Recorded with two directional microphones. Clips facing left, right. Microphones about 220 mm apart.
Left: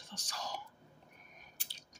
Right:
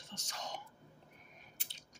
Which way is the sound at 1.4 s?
25° right (ahead or behind).